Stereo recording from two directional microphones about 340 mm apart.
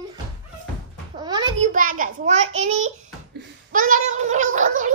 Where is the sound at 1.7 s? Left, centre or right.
Right.